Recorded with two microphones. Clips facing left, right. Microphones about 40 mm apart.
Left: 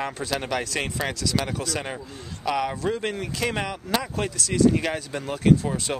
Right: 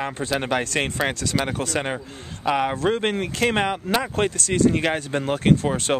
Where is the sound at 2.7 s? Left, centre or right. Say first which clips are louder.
Right 5 dB; right.